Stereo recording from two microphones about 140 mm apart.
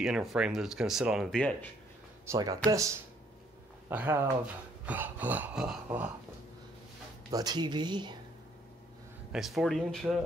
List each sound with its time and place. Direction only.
0.0 s speech: 5° right (ahead or behind)
2.2 s speech: 25° right (ahead or behind)
3.9 s a sound: 15° right (ahead or behind)
7.3 s speech: 30° right (ahead or behind)
9.3 s speech: centre (ahead or behind)